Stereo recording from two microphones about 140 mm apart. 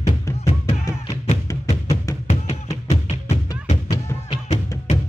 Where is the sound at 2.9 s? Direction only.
50° left (ahead or behind).